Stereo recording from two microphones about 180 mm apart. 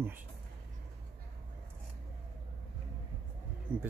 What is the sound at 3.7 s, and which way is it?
Insect, 10° right (ahead or behind).